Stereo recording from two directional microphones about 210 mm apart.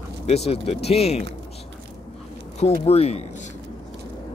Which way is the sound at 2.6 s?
30° left (ahead or behind).